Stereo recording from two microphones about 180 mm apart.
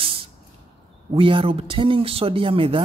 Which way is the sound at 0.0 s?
30° right (ahead or behind).